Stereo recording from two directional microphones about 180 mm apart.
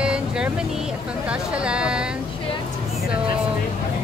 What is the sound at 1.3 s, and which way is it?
Speech, 5° right (ahead or behind).